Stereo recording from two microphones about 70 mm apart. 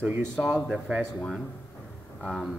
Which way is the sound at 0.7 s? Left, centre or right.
Centre.